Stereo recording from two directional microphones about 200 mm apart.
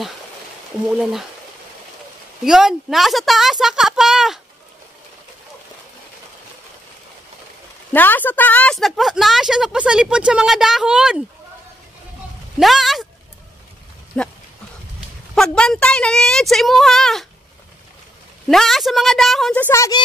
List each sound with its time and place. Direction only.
0.8 s a woman's voice: 5° right (ahead or behind)
2.4 s a woman's voice: centre (ahead or behind)
7.9 s a woman's voice: 10° left (ahead or behind)
12.5 s a woman's voice: centre (ahead or behind)
14.2 s speech: 5° left (ahead or behind)
15.3 s a woman's voice: 5° left (ahead or behind)
18.5 s a woman's voice: centre (ahead or behind)